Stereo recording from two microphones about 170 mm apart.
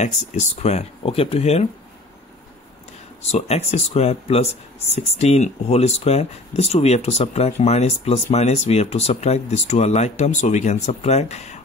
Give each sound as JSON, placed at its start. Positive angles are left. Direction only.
{"t": 0.0, "sound": "speech", "side_deg": 40}
{"t": 3.2, "sound": "speech", "side_deg": 40}